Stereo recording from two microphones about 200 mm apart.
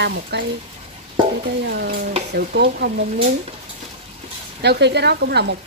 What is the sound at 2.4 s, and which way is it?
Speech, 55° right (ahead or behind).